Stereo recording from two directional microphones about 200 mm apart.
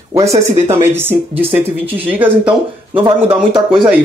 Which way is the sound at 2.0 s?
10° right (ahead or behind).